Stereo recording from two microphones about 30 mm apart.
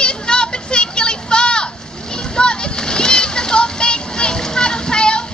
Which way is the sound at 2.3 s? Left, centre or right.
Left.